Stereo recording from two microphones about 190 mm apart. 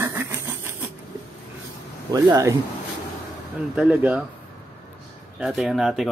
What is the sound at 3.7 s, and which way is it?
Speech, 5° right (ahead or behind).